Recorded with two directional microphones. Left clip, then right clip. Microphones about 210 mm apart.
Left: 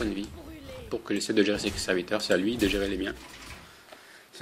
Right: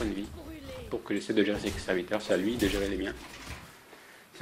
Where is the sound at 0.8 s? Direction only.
25° left (ahead or behind).